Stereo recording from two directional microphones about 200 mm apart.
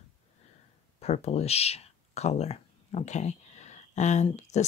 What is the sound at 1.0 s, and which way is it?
Speech, 30° left (ahead or behind).